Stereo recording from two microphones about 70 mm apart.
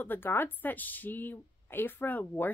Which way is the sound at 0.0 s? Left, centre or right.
Left.